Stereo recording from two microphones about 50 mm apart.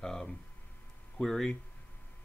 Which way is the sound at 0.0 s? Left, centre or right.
Centre.